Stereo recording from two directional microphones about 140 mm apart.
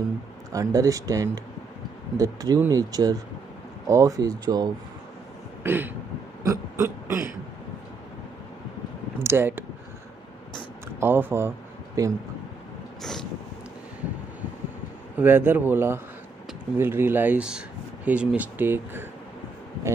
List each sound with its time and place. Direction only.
0.5 s speech: 25° right (ahead or behind)
5.6 s throat clearing: 15° right (ahead or behind)
6.4 s burping: 20° right (ahead or behind)
9.2 s speech: 15° right (ahead or behind)
11.0 s speech: 15° right (ahead or behind)
15.1 s speech: 15° right (ahead or behind)